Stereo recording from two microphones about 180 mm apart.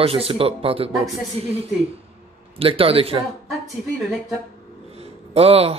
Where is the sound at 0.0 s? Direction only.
30° right (ahead or behind).